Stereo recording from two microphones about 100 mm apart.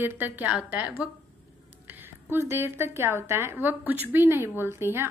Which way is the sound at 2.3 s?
25° right (ahead or behind).